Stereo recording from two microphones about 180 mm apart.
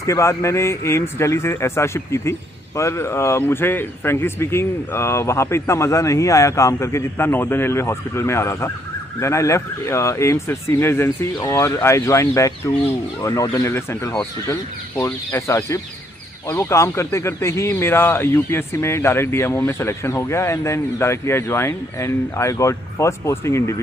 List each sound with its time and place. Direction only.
0.0 s speech: 15° left (ahead or behind)